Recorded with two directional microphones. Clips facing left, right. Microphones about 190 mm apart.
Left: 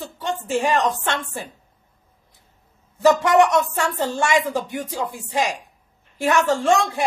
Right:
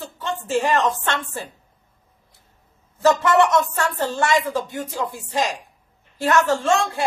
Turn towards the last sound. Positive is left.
turn(degrees=15)  # may be behind; listen again after turning